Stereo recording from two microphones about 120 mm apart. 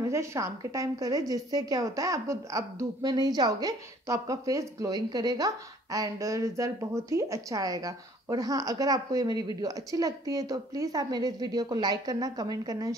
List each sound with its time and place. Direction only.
0.0 s a woman's voice: 25° right (ahead or behind)